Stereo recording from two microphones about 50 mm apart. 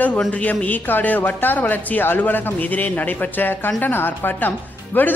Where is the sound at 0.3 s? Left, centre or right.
Left.